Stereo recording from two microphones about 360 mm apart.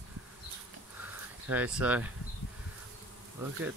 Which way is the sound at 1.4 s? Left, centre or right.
Centre.